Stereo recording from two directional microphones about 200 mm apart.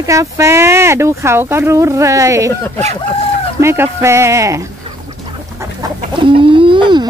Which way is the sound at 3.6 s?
15° right (ahead or behind).